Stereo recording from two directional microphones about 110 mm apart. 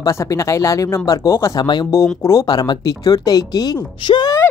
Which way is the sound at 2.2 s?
25° left (ahead or behind).